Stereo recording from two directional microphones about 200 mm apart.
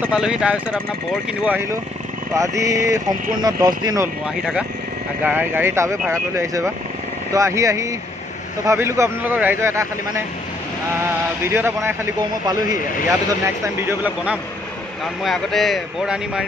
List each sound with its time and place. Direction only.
0.0 s a man's voice: 5° right (ahead or behind)
4.4 s a man's voice: centre (ahead or behind)
11.5 s a man's voice: 10° right (ahead or behind)